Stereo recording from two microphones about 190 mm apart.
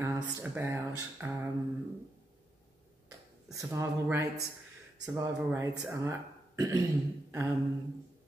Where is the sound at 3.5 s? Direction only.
15° right (ahead or behind).